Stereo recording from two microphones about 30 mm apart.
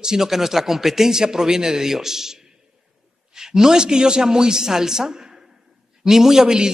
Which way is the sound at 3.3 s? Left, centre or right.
Centre.